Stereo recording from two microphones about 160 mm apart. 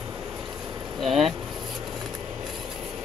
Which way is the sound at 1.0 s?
Centre (ahead or behind).